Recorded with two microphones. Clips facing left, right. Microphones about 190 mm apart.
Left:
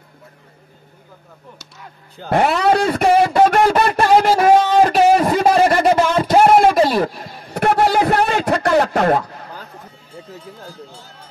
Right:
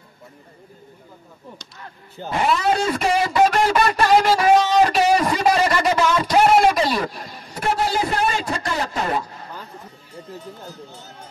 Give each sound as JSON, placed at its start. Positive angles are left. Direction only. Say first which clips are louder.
{"t": 2.2, "sound": "speech", "louder": "left 5 dB", "side_deg": 60}
{"t": 5.3, "sound": "a sound", "louder": "left 5 dB", "side_deg": 50}
{"t": 7.5, "sound": "radio", "louder": "left 6 dB", "side_deg": 60}
{"t": 10.6, "sound": "speech", "louder": "left 1 dB", "side_deg": -20}